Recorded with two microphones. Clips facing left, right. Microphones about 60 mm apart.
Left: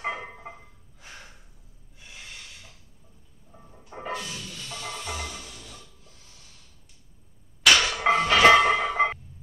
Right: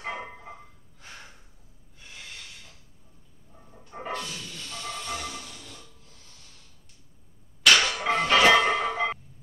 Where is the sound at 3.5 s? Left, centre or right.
Centre.